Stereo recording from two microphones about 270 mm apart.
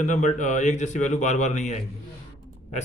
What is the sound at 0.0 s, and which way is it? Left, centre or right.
A man's voice, left.